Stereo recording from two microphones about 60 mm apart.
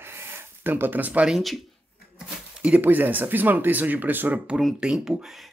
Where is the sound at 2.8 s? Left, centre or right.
Right.